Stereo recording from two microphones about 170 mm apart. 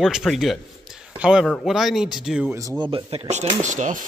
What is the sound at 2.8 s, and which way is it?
Speech, 30° right (ahead or behind).